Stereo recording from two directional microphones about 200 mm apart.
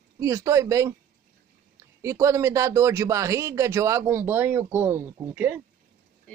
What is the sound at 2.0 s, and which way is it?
Speech, 15° right (ahead or behind).